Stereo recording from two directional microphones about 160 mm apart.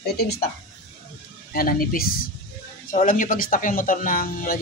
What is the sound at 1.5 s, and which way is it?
Speech, 65° left (ahead or behind).